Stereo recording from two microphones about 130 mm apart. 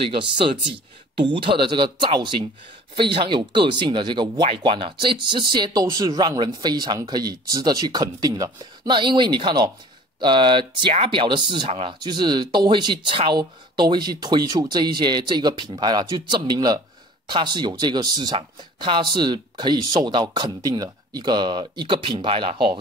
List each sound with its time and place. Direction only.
0.0 s speech: 40° right (ahead or behind)